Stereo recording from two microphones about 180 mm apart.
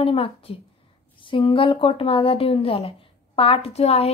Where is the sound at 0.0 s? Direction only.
30° left (ahead or behind).